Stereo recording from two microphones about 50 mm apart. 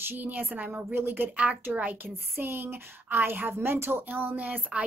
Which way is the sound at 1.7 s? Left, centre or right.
Right.